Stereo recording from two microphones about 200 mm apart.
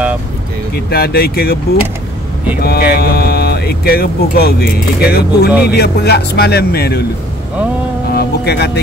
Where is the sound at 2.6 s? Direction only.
50° left (ahead or behind).